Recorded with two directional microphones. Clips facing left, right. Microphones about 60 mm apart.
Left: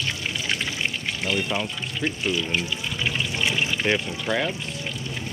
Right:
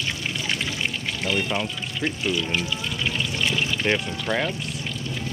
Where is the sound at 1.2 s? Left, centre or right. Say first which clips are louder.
Right 1 dB; centre.